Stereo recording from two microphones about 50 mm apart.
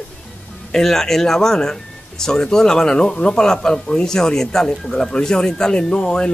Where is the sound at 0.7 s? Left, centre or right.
Centre.